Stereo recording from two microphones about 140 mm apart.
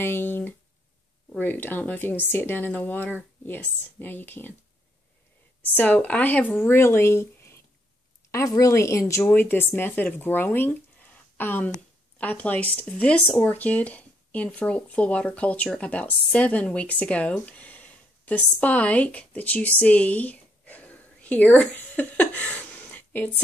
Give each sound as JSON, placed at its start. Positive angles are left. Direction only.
{"t": 0.0, "sound": "a sound", "side_deg": 15}
{"t": 1.4, "sound": "speech", "side_deg": 15}
{"t": 5.8, "sound": "speech", "side_deg": 10}